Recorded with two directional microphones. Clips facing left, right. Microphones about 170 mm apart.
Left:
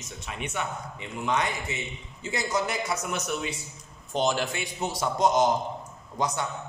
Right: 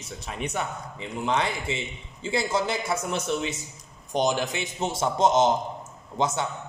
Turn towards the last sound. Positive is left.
turn(degrees=-25)  # may be behind; listen again after turning